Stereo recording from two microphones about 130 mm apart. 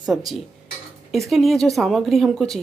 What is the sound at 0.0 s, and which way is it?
Speech, centre (ahead or behind).